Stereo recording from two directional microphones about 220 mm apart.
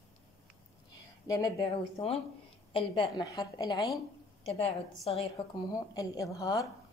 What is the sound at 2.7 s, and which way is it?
A woman's voice, 20° left (ahead or behind).